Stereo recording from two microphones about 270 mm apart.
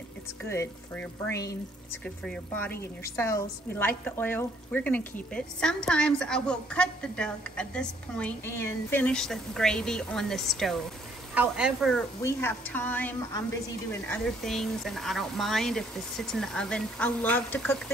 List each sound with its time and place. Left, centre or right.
0.4 s a woman's voice: centre
2.0 s a woman's voice: centre
12.2 s a woman's voice: centre